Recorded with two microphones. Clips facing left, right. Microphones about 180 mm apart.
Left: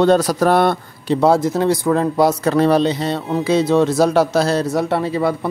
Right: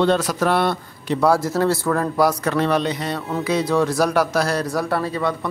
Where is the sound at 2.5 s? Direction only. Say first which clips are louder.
Left 5 dB; 35° left (ahead or behind).